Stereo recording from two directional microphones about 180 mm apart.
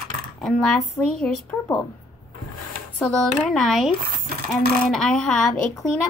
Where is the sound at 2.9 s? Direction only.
5° left (ahead or behind).